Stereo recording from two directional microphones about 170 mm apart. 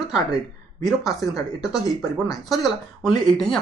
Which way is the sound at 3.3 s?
Centre (ahead or behind).